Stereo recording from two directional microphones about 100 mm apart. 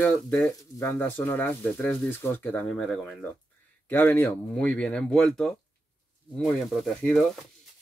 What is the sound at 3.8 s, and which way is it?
Speech, 20° left (ahead or behind).